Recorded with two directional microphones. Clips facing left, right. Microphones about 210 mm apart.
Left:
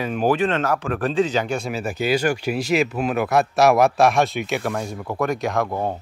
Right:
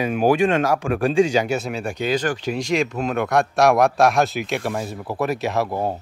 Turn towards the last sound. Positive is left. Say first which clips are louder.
# even
turn(degrees=-5)  # may be behind; listen again after turning